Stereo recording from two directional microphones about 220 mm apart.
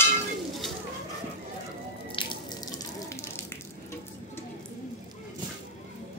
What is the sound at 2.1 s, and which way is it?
Water, 20° left (ahead or behind).